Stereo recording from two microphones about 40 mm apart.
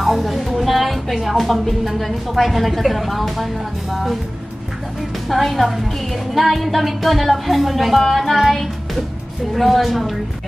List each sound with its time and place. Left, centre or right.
0.0 s music: centre
5.3 s music: centre